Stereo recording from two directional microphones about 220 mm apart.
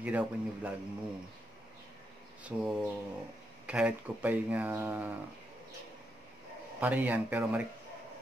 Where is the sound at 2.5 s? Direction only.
5° right (ahead or behind).